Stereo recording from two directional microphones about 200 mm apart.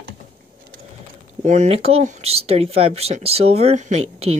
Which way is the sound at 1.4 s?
35° right (ahead or behind).